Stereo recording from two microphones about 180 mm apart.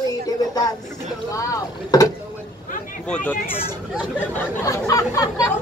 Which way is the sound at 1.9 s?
20° left (ahead or behind).